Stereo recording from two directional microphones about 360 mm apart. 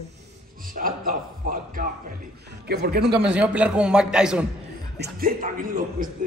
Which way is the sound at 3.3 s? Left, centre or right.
Centre.